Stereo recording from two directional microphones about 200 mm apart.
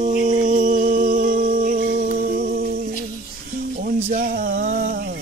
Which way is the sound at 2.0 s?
45° right (ahead or behind).